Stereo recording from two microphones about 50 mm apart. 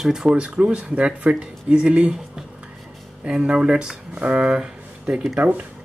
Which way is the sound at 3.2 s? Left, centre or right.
Centre.